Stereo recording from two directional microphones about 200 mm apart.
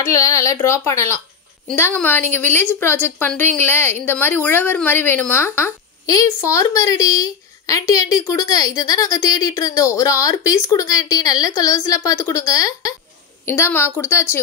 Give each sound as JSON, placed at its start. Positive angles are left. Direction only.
{"t": 0.0, "sound": "a woman's voice", "side_deg": 15}